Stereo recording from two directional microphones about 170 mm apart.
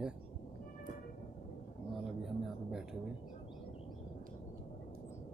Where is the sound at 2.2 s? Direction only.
5° right (ahead or behind).